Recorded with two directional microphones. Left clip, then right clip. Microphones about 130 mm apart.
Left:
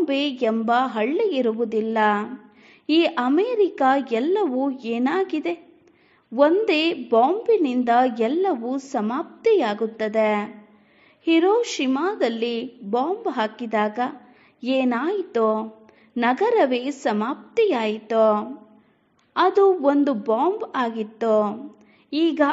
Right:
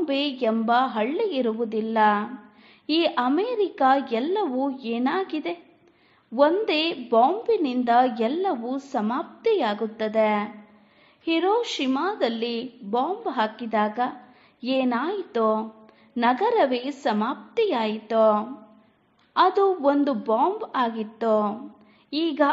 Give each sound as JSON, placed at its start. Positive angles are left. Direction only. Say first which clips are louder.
{"t": 0.0, "sound": "a woman's voice", "louder": "left 2 dB", "side_deg": 40}